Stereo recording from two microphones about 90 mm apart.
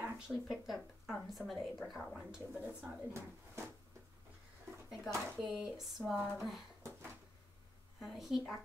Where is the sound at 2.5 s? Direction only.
15° right (ahead or behind).